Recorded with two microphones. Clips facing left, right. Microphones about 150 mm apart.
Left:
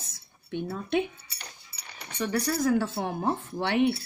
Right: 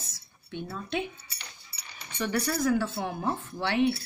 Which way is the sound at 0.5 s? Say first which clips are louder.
Left 5 dB; 55° left (ahead or behind).